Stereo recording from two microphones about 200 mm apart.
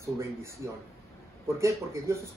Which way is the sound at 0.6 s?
15° right (ahead or behind).